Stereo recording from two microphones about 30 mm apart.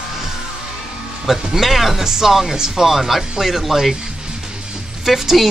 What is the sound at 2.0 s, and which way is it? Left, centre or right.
A woman's voice, centre.